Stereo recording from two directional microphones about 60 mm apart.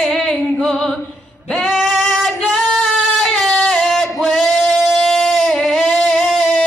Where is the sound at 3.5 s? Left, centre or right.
Centre.